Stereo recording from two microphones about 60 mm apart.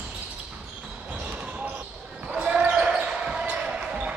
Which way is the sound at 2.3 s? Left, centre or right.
Centre.